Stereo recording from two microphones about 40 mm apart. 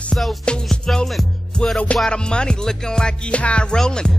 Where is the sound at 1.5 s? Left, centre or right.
Centre.